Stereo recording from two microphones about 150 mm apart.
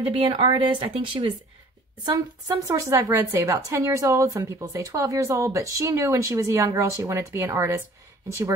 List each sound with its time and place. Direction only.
0.1 s speech: 35° right (ahead or behind)
2.0 s a woman's voice: 20° right (ahead or behind)